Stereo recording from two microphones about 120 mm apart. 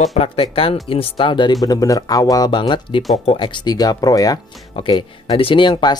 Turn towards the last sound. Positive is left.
turn(degrees=35)  # may be behind; listen again after turning